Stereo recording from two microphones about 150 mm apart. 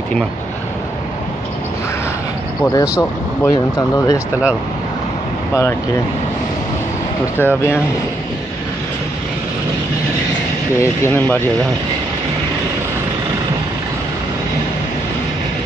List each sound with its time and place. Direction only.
2.6 s speech: 20° left (ahead or behind)
5.5 s speech: 20° left (ahead or behind)
7.3 s speech: 15° left (ahead or behind)
10.8 s speech: 15° left (ahead or behind)